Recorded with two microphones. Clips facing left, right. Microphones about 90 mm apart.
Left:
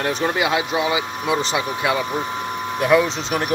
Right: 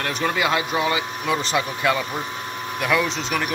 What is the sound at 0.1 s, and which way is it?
Speech, 20° left (ahead or behind).